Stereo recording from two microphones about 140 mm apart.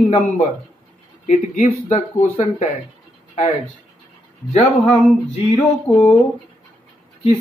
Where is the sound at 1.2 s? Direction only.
60° left (ahead or behind).